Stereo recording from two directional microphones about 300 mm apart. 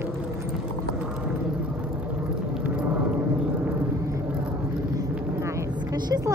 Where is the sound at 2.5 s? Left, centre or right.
Centre.